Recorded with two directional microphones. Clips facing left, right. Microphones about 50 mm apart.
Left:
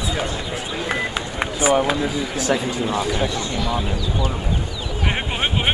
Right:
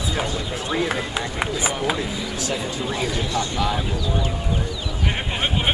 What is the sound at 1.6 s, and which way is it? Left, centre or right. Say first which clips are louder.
Speech: left 12 dB; left.